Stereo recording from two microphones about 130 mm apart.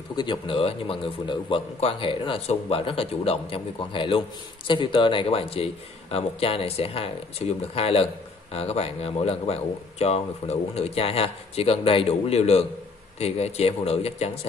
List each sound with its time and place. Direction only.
0.1 s speech: 35° left (ahead or behind)